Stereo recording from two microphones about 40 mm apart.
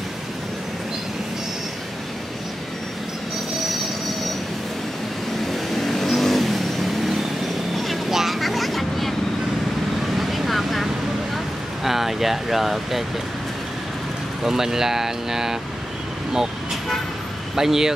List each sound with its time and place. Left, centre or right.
5.5 s vehicle: centre
10.1 s vehicle: centre
11.8 s a sound: centre
14.4 s speech: centre
17.6 s speech: centre